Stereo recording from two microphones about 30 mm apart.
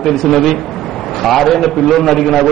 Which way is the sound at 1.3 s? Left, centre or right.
Centre.